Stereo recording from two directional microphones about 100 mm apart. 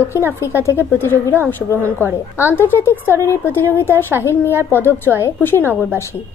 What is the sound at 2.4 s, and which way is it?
Speech, 20° left (ahead or behind).